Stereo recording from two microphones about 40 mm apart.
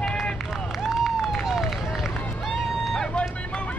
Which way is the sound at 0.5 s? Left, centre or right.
Centre.